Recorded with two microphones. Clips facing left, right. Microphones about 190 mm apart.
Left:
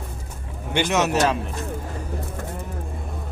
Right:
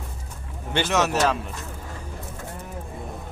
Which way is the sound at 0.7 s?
15° left (ahead or behind).